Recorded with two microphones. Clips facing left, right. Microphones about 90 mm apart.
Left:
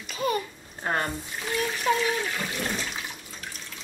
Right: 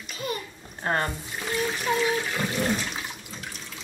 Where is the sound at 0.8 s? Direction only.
Centre (ahead or behind).